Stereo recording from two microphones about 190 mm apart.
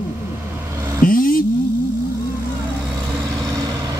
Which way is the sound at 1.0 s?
45° left (ahead or behind).